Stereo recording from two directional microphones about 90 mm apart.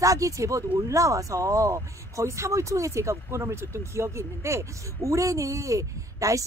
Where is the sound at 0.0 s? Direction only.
35° right (ahead or behind).